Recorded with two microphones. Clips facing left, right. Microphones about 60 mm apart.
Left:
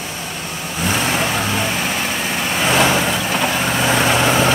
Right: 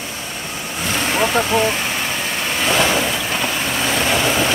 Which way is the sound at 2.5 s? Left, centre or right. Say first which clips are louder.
Left 2 dB; centre.